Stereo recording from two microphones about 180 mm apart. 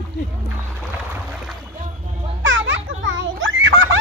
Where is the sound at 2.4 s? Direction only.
90° right.